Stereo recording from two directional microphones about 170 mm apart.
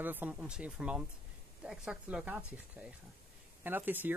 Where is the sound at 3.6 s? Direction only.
10° right (ahead or behind).